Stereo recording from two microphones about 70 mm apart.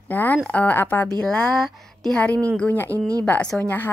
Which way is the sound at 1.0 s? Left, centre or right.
Centre.